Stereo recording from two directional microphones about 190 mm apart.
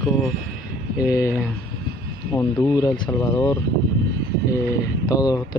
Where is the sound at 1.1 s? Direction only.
15° left (ahead or behind).